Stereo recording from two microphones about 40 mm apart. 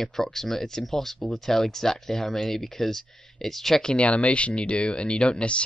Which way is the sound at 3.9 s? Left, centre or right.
Left.